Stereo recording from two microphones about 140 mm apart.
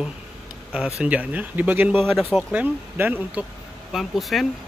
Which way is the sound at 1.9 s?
Centre (ahead or behind).